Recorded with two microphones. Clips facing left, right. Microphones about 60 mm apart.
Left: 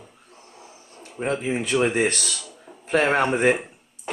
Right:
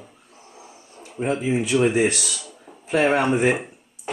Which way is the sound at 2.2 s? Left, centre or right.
Centre.